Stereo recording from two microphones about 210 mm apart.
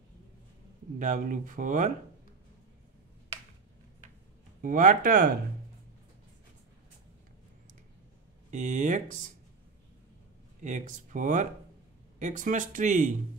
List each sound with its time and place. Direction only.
0.9 s speech: 40° right (ahead or behind)
4.6 s speech: 40° right (ahead or behind)
8.5 s speech: 35° right (ahead or behind)
10.6 s speech: 35° right (ahead or behind)